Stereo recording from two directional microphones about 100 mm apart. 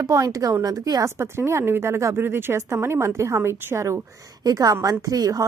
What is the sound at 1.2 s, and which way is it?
Speech, 25° right (ahead or behind).